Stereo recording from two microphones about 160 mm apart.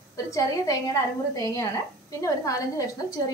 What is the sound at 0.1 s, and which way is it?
A woman's voice, 20° left (ahead or behind).